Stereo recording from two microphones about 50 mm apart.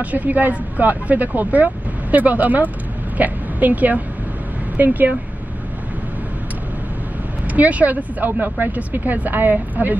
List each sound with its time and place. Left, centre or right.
0.0 s a woman's voice: right
7.4 s speech: right